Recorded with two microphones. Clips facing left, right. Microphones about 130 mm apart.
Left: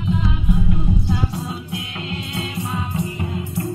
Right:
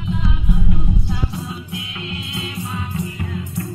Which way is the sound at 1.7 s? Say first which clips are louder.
Left 1 dB; 45° left (ahead or behind).